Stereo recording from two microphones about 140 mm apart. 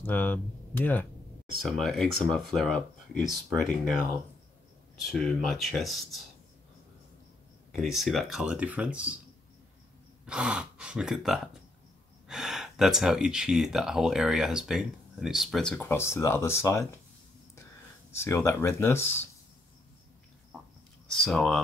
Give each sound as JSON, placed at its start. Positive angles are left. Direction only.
{"t": 0.0, "sound": "speech", "side_deg": 15}
{"t": 1.6, "sound": "speech", "side_deg": 0}
{"t": 5.0, "sound": "speech", "side_deg": 0}
{"t": 7.7, "sound": "speech", "side_deg": 0}
{"t": 10.2, "sound": "speech", "side_deg": -5}
{"t": 15.8, "sound": "speech", "side_deg": 20}
{"t": 18.1, "sound": "speech", "side_deg": 20}
{"t": 21.1, "sound": "speech", "side_deg": 5}